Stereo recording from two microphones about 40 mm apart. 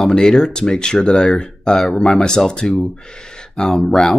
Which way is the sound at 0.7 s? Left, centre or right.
Centre.